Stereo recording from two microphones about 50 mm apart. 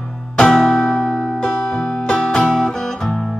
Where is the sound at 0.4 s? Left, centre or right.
Centre.